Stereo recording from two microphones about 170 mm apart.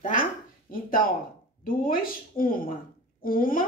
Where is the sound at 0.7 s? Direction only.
55° left (ahead or behind).